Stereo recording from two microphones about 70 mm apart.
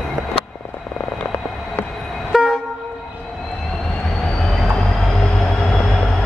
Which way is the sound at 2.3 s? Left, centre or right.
Centre.